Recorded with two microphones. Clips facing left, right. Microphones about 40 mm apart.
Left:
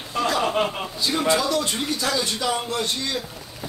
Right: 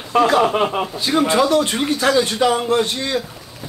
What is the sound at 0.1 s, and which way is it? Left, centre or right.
Speech, right.